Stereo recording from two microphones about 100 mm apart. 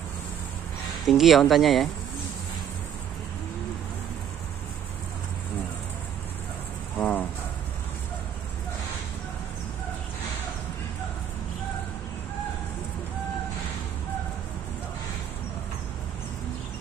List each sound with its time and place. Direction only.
1.0 s speech: centre (ahead or behind)
7.0 s cricket: 15° left (ahead or behind)